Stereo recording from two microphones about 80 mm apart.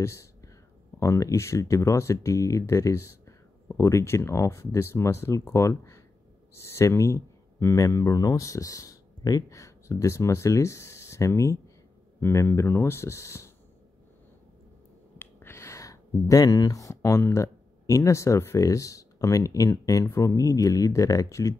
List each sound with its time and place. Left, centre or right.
0.0 s whispering: left
0.9 s speech: left
15.1 s speech: left